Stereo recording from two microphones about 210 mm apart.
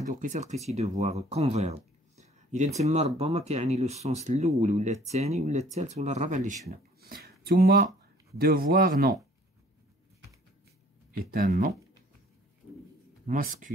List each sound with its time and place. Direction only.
0.1 s speech: 35° right (ahead or behind)
2.1 s a sound: 35° right (ahead or behind)
3.2 s speech: 30° right (ahead or behind)
7.0 s a sound: 50° right (ahead or behind)
8.4 s speech: 45° right (ahead or behind)
11.2 s speech: 40° right (ahead or behind)
13.3 s speech: 40° right (ahead or behind)